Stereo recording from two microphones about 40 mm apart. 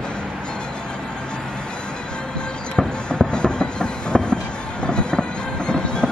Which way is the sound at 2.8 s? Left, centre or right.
Centre.